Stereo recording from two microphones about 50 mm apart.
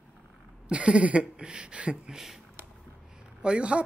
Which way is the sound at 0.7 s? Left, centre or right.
Right.